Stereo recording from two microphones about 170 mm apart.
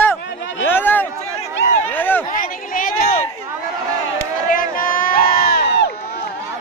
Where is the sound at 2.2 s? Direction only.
55° left (ahead or behind).